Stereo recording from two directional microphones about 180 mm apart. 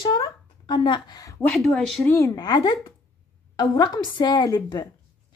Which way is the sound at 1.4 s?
5° left (ahead or behind).